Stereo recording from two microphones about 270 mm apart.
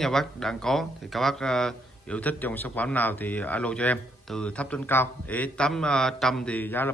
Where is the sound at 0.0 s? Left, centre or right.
Centre.